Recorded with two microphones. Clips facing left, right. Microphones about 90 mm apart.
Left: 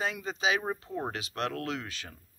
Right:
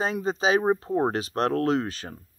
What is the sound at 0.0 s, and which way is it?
Speech, 35° right (ahead or behind).